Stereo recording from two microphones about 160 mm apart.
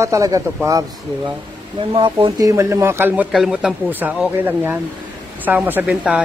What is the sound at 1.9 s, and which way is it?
Speech, 35° right (ahead or behind).